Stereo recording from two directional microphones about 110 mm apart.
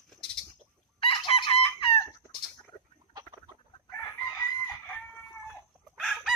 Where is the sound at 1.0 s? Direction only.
50° left (ahead or behind).